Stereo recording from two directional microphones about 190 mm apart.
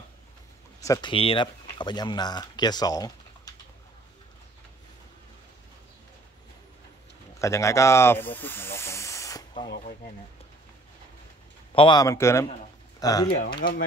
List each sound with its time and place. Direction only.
0.7 s speech: 20° left (ahead or behind)
7.3 s speech: 15° left (ahead or behind)
11.7 s speech: 25° left (ahead or behind)
13.4 s speech: 50° left (ahead or behind)